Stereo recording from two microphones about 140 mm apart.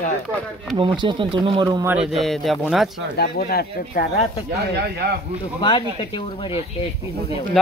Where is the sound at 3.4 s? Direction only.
90° left.